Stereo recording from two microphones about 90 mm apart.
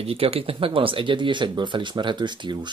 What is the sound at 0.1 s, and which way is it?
Speech, 90° right.